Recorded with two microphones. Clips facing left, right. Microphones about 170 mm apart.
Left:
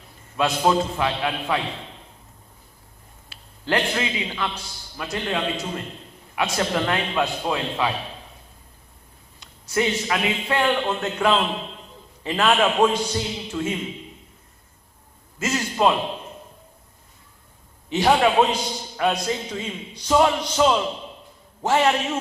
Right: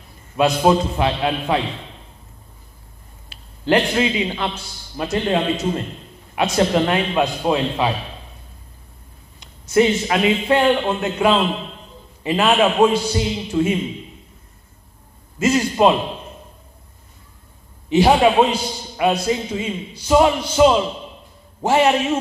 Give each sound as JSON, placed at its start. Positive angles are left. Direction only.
{"t": 0.4, "sound": "a man's voice", "side_deg": -20}
{"t": 3.3, "sound": "a man's voice", "side_deg": -20}
{"t": 9.4, "sound": "a man's voice", "side_deg": -25}
{"t": 11.0, "sound": "a man's voice", "side_deg": -10}
{"t": 13.5, "sound": "a man's voice", "side_deg": -25}
{"t": 15.3, "sound": "a man's voice", "side_deg": -15}
{"t": 17.8, "sound": "a man's voice", "side_deg": -15}